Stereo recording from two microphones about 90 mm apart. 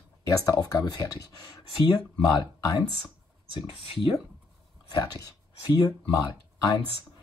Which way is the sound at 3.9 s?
70° left (ahead or behind).